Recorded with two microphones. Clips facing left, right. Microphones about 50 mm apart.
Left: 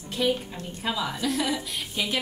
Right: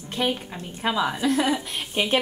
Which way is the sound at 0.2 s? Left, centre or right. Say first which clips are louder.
Even; right.